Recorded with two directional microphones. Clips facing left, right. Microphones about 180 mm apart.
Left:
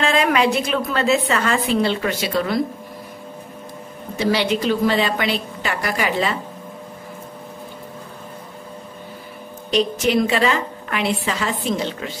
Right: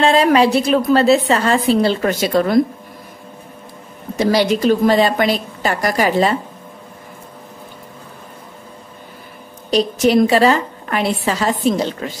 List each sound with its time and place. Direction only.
0.0 s a woman's voice: 30° right (ahead or behind)
4.2 s a woman's voice: 40° right (ahead or behind)
9.7 s a woman's voice: 35° right (ahead or behind)